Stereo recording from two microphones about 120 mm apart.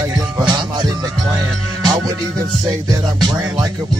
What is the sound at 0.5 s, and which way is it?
Music, 40° right (ahead or behind).